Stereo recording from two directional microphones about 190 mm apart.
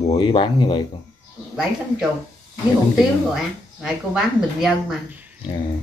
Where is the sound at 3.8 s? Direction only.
Centre (ahead or behind).